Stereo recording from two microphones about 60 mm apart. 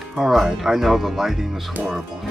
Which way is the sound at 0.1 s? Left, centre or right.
Centre.